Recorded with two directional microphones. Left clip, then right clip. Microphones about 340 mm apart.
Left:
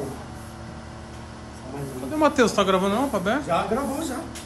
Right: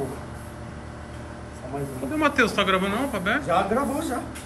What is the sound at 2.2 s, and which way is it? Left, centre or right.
Speech, centre.